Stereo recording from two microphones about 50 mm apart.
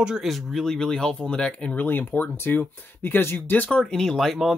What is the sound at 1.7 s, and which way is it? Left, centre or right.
Speech, left.